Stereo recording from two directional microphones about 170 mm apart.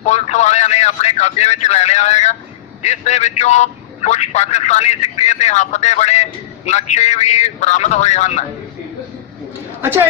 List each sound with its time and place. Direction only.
0.0 s a man's voice: 40° left (ahead or behind)